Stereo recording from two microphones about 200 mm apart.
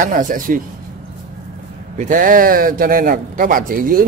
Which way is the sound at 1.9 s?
40° right (ahead or behind).